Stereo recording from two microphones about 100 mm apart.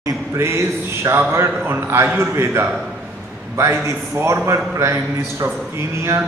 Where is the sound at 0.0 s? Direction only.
30° right (ahead or behind).